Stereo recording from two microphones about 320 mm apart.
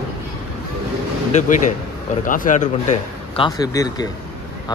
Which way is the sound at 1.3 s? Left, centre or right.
Left.